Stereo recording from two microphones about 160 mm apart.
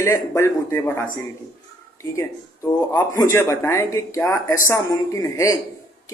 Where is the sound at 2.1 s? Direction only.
15° left (ahead or behind).